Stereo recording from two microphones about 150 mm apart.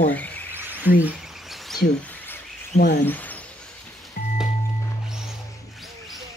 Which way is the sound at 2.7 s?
65° left (ahead or behind).